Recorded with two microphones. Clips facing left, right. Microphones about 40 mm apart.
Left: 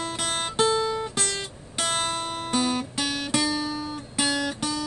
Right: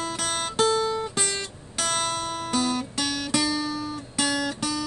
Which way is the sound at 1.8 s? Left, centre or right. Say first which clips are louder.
Even; left.